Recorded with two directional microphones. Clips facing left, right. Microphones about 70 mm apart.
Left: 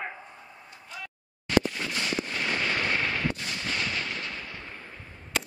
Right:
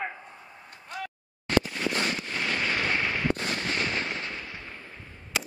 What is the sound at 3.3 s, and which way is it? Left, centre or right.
Fireworks, right.